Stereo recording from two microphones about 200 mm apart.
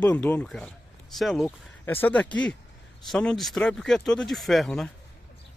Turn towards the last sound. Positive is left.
turn(degrees=0)  # may be behind; listen again after turning